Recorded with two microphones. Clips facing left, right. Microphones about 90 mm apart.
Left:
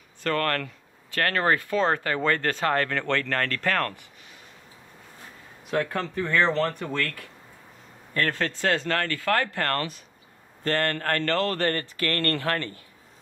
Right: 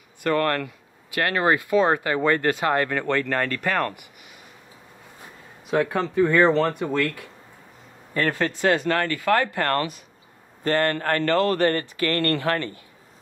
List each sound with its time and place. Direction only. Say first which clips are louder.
0.2 s speech: right 4 dB; 15° right (ahead or behind)
5.7 s speech: right 4 dB; 10° right (ahead or behind)